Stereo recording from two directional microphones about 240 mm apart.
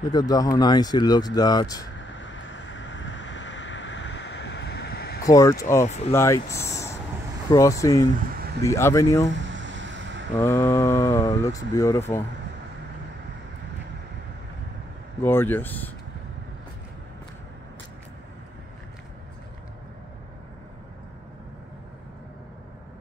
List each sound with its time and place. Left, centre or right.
0.1 s speech: centre
2.0 s a sound: left
5.2 s speech: centre
5.9 s speech: left
6.1 s speech: centre
9.4 s a sound: right
10.3 s speech: centre
15.2 s speech: centre